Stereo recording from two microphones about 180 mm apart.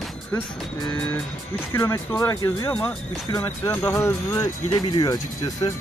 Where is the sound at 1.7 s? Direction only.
15° left (ahead or behind).